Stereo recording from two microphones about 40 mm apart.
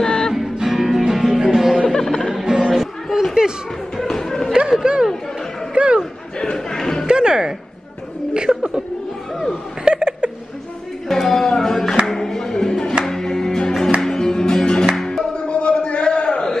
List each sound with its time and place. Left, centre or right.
0.0 s music: centre
0.3 s music: centre
2.0 s music: centre
2.3 s music: centre
2.7 s chatter: centre
3.9 s music: centre
4.5 s a sound: centre
5.8 s a sound: right
6.3 s crowd: centre
7.1 s music: centre
8.5 s chuckle: centre
9.8 s a sound: right
11.1 s music: centre
15.3 s a sound: left